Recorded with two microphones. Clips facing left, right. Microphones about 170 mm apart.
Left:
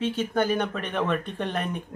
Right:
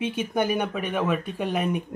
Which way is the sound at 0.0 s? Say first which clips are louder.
Even; 15° right (ahead or behind).